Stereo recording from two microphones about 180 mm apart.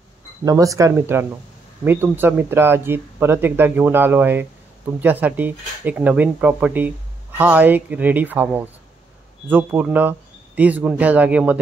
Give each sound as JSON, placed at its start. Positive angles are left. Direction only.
{"t": 0.5, "sound": "speech", "side_deg": -20}